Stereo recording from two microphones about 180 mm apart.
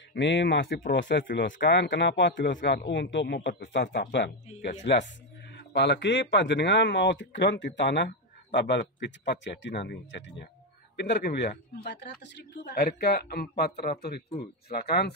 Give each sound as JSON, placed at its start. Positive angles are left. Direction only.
{"t": 0.1, "sound": "speech", "side_deg": 75}
{"t": 0.9, "sound": "a man's voice", "side_deg": 90}